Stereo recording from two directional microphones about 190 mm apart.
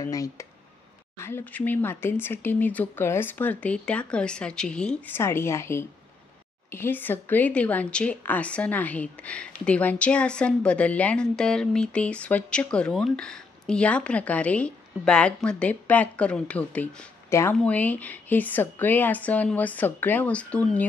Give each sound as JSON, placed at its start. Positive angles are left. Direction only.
{"t": 0.0, "sound": "a woman's voice", "side_deg": 15}